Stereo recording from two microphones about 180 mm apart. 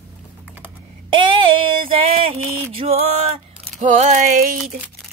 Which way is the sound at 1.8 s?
30° right (ahead or behind).